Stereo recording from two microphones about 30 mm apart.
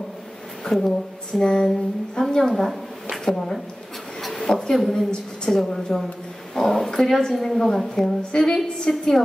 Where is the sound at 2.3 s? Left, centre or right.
Centre.